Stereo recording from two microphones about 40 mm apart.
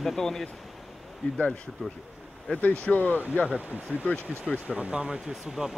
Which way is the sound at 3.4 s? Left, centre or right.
Left.